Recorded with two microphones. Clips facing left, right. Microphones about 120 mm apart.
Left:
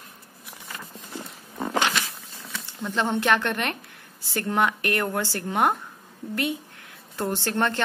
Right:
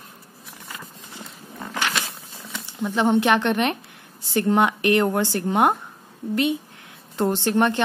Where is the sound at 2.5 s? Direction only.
15° right (ahead or behind).